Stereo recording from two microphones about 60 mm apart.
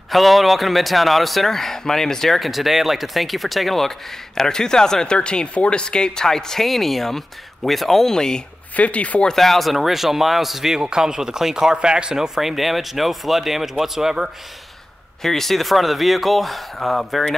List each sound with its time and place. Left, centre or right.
0.1 s speech: centre
8.7 s speech: left
9.3 s speech: centre
15.2 s speech: centre